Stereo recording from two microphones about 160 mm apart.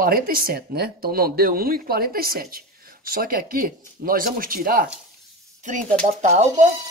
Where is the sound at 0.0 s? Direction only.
65° right (ahead or behind).